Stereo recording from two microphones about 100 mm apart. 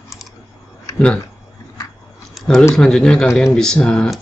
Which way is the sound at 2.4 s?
Centre (ahead or behind).